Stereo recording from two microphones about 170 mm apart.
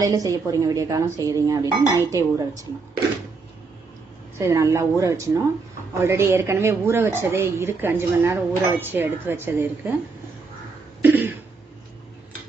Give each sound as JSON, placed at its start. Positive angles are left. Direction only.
{"t": 0.0, "sound": "speech", "side_deg": -20}
{"t": 4.4, "sound": "a woman's voice", "side_deg": -15}
{"t": 11.0, "sound": "cough", "side_deg": -10}